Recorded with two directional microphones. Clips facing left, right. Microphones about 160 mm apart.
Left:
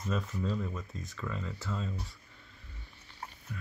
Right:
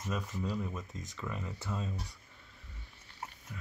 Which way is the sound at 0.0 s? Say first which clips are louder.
Left 3 dB; 10° right (ahead or behind).